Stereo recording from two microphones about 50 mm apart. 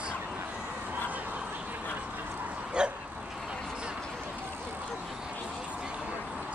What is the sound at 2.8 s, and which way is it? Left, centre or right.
Dog, centre.